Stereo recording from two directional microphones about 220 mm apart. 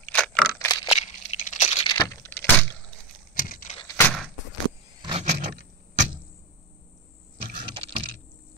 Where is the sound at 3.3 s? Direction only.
40° left (ahead or behind).